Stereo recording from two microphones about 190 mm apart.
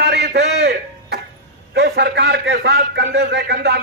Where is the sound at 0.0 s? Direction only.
60° right (ahead or behind).